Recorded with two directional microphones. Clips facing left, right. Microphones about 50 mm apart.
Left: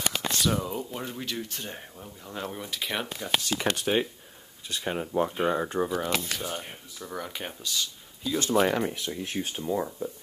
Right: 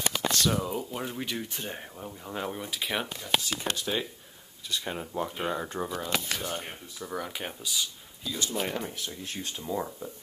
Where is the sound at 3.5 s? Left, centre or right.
Left.